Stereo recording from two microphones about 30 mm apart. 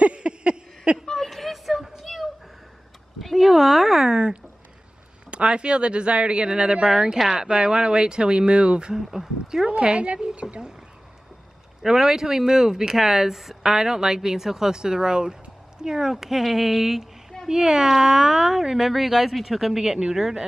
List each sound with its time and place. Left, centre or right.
0.0 s a sound: right
1.2 s a sound: centre
3.3 s speech: centre
4.1 s speech: right
8.9 s speech: centre
9.7 s speech: right
11.8 s speech: centre
13.6 s speech: centre
17.5 s speech: right